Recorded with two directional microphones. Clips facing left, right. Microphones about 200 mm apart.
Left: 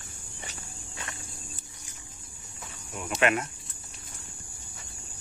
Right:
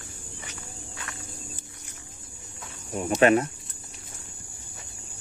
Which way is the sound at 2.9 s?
35° right (ahead or behind).